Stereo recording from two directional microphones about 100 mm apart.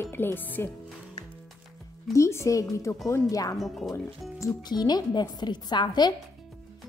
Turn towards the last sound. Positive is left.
turn(degrees=45)  # may be behind; listen again after turning